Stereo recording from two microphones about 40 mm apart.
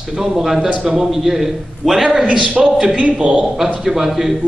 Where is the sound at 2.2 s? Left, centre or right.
Right.